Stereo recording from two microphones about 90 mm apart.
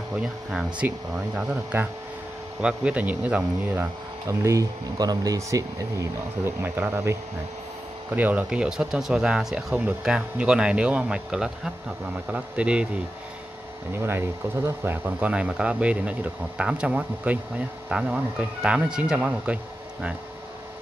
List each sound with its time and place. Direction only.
0.1 s speech: 10° right (ahead or behind)
4.3 s speech: 35° right (ahead or behind)
6.4 s speech: 25° right (ahead or behind)
8.1 s speech: 20° right (ahead or behind)
13.9 s speech: 25° right (ahead or behind)